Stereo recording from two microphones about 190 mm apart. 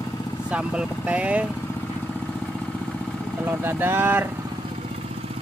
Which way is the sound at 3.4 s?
10° right (ahead or behind).